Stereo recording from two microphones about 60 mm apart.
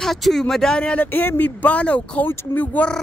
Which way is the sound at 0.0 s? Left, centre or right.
Centre.